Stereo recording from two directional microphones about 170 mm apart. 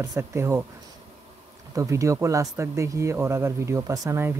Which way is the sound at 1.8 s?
15° right (ahead or behind).